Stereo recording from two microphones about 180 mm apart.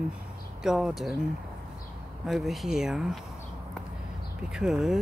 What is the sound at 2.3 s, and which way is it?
Speech, centre (ahead or behind).